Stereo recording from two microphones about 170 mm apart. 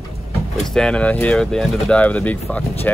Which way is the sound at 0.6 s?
5° left (ahead or behind).